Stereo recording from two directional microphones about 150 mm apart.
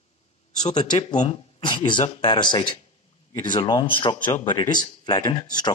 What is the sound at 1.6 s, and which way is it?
Speech, 30° left (ahead or behind).